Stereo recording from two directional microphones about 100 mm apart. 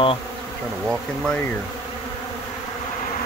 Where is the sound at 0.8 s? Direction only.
5° left (ahead or behind).